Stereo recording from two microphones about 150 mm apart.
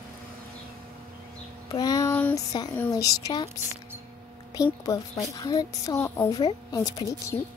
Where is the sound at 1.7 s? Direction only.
25° left (ahead or behind).